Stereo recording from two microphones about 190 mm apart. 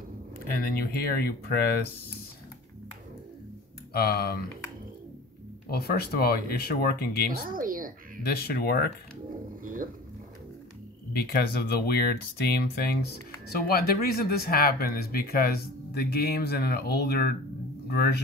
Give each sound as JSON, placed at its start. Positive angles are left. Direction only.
{"t": 0.5, "sound": "speech", "side_deg": 50}
{"t": 3.9, "sound": "speech", "side_deg": 55}
{"t": 5.7, "sound": "speech", "side_deg": 55}
{"t": 7.4, "sound": "a sound", "side_deg": -45}
{"t": 8.2, "sound": "speech", "side_deg": 55}
{"t": 9.6, "sound": "a sound", "side_deg": -45}
{"t": 11.1, "sound": "speech", "side_deg": 55}